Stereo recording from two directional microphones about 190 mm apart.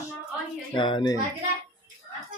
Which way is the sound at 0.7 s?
25° left (ahead or behind).